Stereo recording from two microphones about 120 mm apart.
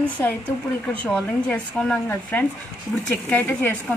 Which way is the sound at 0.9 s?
10° left (ahead or behind).